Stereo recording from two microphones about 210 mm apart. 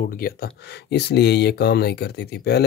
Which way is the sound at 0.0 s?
45° left (ahead or behind).